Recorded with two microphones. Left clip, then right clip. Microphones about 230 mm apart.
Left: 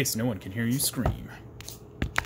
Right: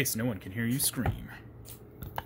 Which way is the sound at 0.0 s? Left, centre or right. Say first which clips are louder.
Left 3 dB; centre.